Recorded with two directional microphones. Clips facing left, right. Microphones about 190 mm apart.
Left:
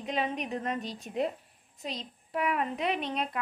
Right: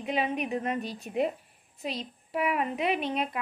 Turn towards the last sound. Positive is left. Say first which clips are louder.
# right 3 dB
turn(degrees=-5)  # may be behind; listen again after turning